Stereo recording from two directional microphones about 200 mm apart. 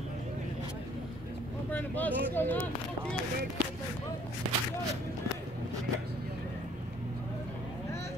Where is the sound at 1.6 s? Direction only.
10° left (ahead or behind).